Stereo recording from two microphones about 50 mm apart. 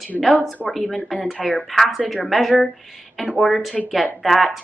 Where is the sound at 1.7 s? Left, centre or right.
Centre.